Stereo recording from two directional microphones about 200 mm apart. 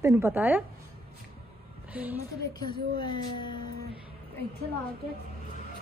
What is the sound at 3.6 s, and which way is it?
Music, 50° right (ahead or behind).